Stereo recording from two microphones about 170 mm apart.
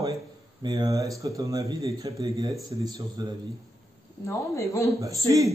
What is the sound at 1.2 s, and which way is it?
Speech, 20° right (ahead or behind).